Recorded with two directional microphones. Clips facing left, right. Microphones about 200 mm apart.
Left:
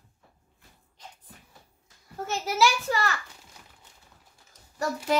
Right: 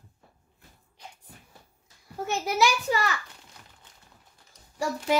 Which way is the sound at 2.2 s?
15° right (ahead or behind).